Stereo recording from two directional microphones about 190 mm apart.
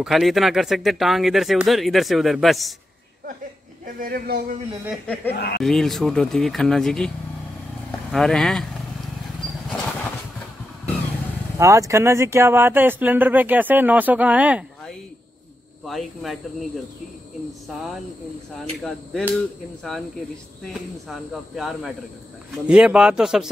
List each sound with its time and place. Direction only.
0.0 s speech: centre (ahead or behind)
3.8 s speech: 50° right (ahead or behind)
5.0 s speech: 5° left (ahead or behind)
5.3 s speech: 55° left (ahead or behind)
5.6 s speech: centre (ahead or behind)
8.1 s speech: centre (ahead or behind)
11.5 s speech: 15° right (ahead or behind); by 16.3 s centre (ahead or behind)
18.6 s speech: centre (ahead or behind)